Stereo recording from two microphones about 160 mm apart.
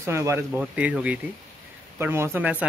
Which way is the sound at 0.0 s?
15° right (ahead or behind).